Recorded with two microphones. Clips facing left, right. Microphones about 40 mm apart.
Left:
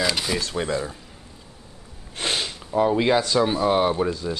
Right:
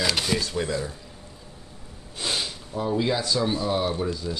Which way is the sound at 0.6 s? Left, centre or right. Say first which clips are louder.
Left 2 dB; left.